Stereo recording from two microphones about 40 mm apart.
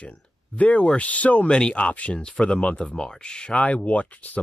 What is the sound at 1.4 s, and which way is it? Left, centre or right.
Speech, left.